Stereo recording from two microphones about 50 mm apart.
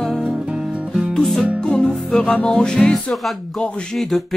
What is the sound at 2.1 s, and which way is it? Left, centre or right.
Music, centre.